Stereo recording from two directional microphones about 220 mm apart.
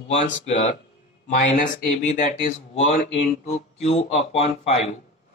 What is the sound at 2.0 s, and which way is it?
Speech, 30° left (ahead or behind).